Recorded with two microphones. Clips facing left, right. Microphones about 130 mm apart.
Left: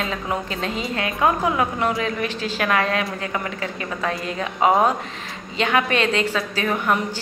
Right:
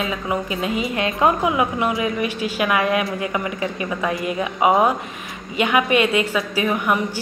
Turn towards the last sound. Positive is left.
turn(degrees=-10)  # may be behind; listen again after turning